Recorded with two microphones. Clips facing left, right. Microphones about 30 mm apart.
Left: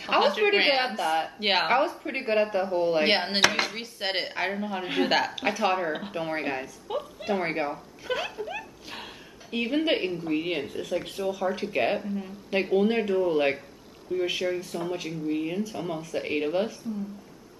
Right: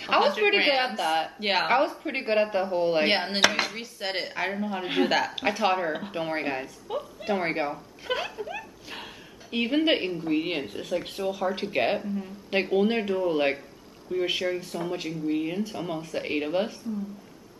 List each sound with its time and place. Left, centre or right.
0.2 s speech: centre
0.9 s speech: centre
1.4 s speech: centre
1.7 s speech: centre
3.1 s speech: centre
3.7 s speech: centre
5.5 s speech: centre
6.9 s a woman's voice: centre
7.2 s speech: centre
8.5 s laughter: centre
9.5 s speech: centre
14.4 s speech: centre